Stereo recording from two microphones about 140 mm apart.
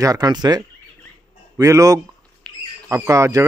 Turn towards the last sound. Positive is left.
turn(degrees=-20)  # may be behind; listen again after turning